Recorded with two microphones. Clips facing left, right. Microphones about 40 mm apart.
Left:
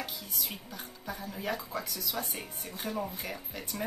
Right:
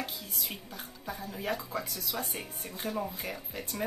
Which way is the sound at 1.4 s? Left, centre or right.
Centre.